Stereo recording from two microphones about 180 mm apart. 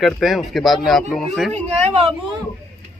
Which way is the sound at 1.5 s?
35° right (ahead or behind).